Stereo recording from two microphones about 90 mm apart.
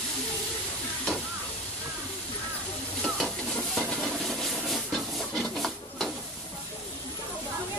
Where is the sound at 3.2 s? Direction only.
5° left (ahead or behind).